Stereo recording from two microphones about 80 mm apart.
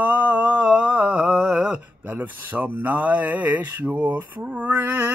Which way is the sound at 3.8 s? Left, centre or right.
Right.